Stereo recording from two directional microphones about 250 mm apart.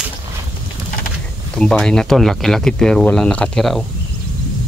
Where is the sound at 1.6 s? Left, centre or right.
Centre.